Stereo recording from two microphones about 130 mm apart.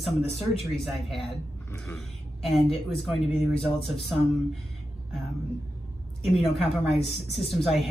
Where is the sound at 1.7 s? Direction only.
5° left (ahead or behind).